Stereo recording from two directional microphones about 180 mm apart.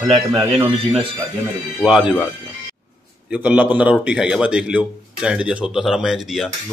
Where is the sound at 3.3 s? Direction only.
5° right (ahead or behind).